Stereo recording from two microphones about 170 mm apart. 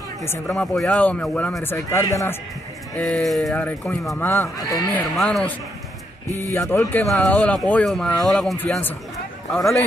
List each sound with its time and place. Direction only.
0.5 s a man's voice: 5° left (ahead or behind)
3.0 s speech: 5° left (ahead or behind)
4.2 s a man's voice: 15° left (ahead or behind)
4.9 s speech: centre (ahead or behind)
6.5 s a man's voice: 15° left (ahead or behind)